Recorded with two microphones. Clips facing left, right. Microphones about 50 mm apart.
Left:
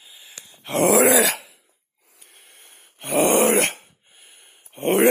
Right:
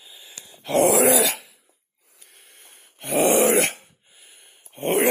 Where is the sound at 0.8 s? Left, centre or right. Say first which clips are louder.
Left 4 dB; left.